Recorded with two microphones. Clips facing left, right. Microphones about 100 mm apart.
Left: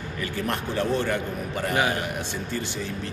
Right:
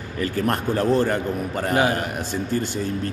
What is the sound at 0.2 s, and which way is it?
A man's voice, 40° right (ahead or behind).